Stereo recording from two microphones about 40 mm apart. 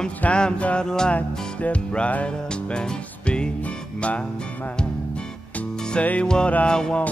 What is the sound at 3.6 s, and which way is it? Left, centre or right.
Music, left.